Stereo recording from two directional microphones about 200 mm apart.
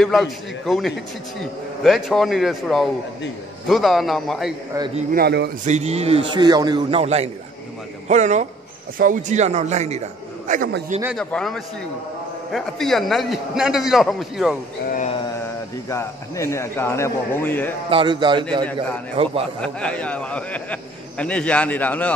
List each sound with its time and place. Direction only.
0.0 s a man's voice: centre (ahead or behind)
5.1 s a man's voice: 55° right (ahead or behind)
5.7 s a man's voice: 30° right (ahead or behind)
11.1 s a man's voice: centre (ahead or behind)
15.9 s a man's voice: 15° left (ahead or behind)
17.8 s a man's voice: 25° right (ahead or behind)
19.6 s a man's voice: 5° left (ahead or behind)